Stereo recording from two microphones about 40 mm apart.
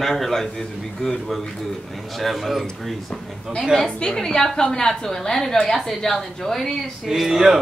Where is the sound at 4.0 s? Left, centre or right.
Centre.